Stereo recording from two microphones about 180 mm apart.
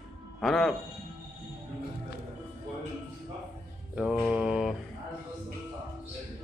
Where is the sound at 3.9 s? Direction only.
5° right (ahead or behind).